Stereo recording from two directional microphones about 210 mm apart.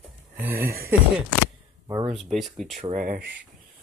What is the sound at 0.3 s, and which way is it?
Speech, 10° right (ahead or behind).